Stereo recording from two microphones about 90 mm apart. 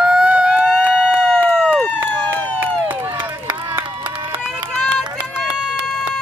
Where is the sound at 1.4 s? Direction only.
20° right (ahead or behind).